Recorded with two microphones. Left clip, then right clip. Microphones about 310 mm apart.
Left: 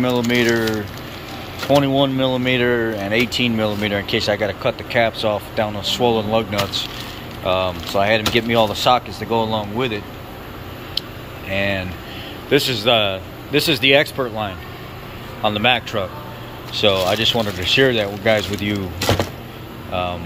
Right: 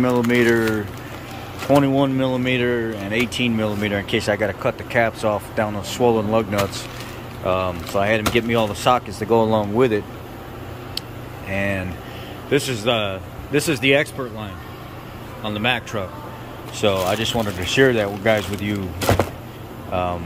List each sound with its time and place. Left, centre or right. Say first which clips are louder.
0.0 s speech: even; centre
11.5 s a man's voice: left 3 dB; centre
19.9 s speech: even; centre